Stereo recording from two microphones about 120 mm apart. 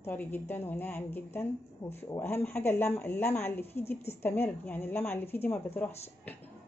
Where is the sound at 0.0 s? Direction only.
15° left (ahead or behind).